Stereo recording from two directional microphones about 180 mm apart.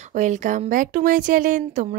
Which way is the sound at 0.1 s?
40° right (ahead or behind).